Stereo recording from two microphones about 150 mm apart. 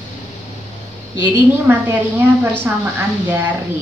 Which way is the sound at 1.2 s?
15° right (ahead or behind).